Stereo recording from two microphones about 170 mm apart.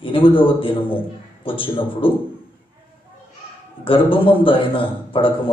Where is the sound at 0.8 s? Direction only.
30° left (ahead or behind).